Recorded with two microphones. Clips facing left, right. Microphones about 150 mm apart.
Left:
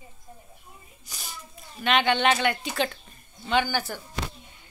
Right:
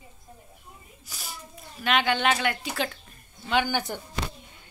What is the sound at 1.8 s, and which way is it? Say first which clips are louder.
Speech: left 2 dB; 5° right (ahead or behind).